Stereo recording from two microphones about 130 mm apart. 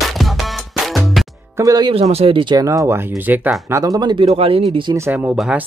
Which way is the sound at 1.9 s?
50° right (ahead or behind).